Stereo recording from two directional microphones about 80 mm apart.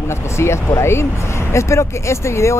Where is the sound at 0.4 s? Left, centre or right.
Left.